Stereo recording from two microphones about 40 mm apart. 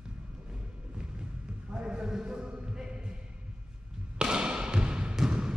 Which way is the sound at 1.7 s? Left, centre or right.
Right.